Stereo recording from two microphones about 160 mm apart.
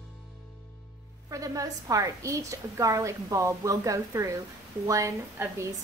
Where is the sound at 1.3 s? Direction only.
20° right (ahead or behind).